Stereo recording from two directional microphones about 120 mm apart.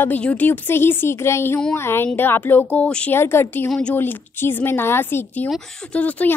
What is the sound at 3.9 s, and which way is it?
A woman's voice, 20° left (ahead or behind).